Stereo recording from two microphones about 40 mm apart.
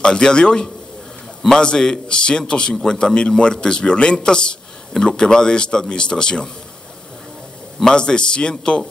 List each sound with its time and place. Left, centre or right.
0.0 s a man's voice: left
7.8 s a man's voice: left